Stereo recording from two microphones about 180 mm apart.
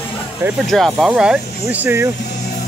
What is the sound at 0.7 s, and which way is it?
Speech, centre (ahead or behind).